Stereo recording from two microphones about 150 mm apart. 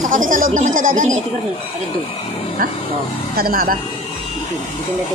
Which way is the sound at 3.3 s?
80° right.